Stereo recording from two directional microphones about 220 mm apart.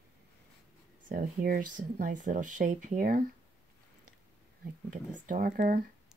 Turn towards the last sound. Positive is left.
turn(degrees=-40)  # may be behind; listen again after turning